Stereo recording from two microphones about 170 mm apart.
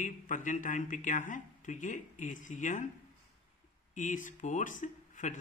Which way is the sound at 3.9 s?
50° left (ahead or behind).